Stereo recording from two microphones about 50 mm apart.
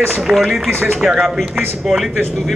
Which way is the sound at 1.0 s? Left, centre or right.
Centre.